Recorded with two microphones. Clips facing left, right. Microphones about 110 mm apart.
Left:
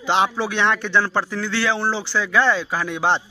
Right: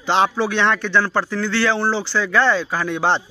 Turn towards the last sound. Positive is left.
turn(degrees=10)  # may be behind; listen again after turning